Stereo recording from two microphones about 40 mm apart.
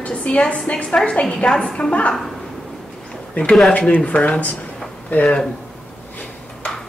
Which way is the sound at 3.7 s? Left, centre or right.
Left.